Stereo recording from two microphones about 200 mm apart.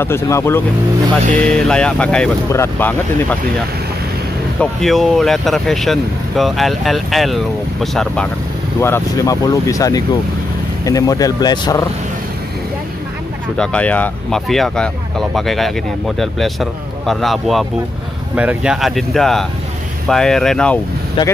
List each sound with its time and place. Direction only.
0.0 s speech: 10° left (ahead or behind)
4.6 s speech: centre (ahead or behind)
8.8 s speech: 15° left (ahead or behind)
13.6 s speech: 5° left (ahead or behind)